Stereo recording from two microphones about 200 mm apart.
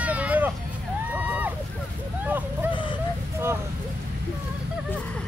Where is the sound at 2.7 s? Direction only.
25° left (ahead or behind).